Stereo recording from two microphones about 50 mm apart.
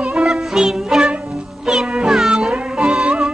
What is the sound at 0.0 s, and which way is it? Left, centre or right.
Music, centre.